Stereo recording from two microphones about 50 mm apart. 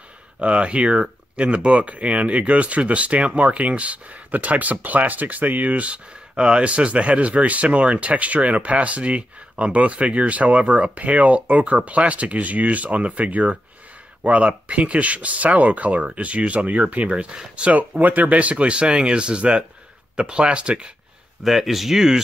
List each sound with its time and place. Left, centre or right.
0.4 s speech: right
17.7 s speech: right
21.5 s speech: centre